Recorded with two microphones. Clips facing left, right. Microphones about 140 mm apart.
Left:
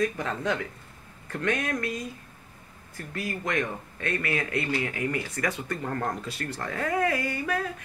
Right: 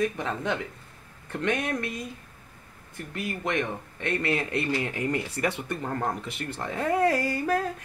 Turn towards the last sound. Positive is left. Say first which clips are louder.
# right 3 dB
turn(degrees=-35)  # may be behind; listen again after turning